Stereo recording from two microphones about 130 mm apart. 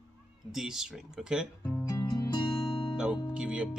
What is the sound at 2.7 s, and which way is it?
Music, 45° left (ahead or behind).